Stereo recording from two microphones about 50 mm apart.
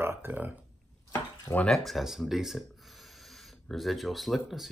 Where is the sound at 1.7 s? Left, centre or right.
Centre.